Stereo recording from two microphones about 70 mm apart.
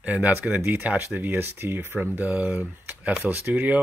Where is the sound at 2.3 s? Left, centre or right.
Right.